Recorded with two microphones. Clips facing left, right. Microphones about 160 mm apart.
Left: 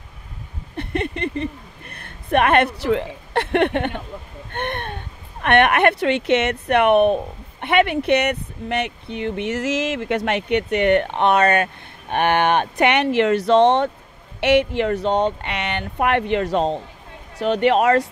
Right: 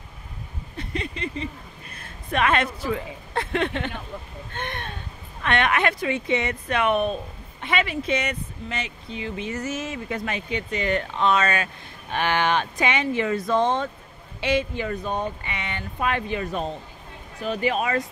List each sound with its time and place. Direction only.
0.7 s a woman's voice: 60° left (ahead or behind); by 16.7 s 85° left
17.4 s speech: 75° left (ahead or behind)